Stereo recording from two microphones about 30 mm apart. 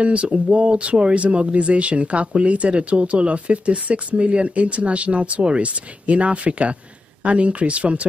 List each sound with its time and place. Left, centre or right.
0.0 s speech: right